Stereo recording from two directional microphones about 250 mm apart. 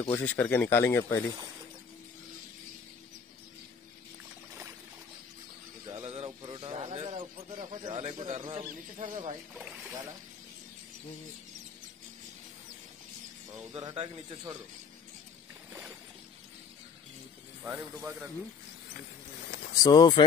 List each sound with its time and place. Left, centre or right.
0.0 s speech: centre
5.9 s speech: right
9.6 s speech: centre
13.7 s speech: centre
17.6 s speech: centre
19.7 s speech: centre